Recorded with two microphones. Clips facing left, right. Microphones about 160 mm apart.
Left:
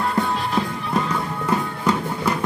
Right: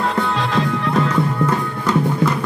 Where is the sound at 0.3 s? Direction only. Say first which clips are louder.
Right 3 dB; 90° right.